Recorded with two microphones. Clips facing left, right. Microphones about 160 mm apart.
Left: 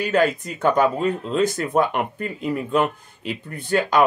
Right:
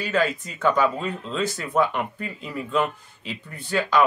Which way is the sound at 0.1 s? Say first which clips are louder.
Left 3 dB; 50° left (ahead or behind).